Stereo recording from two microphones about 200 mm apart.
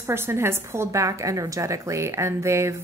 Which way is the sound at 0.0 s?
10° right (ahead or behind).